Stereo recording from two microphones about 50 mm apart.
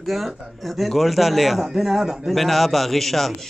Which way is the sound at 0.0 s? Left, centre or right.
Centre.